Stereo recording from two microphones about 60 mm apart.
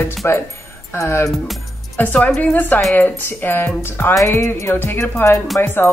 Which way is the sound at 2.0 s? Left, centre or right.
Left.